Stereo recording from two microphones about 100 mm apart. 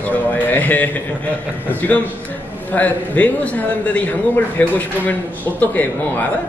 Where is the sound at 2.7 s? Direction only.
15° left (ahead or behind).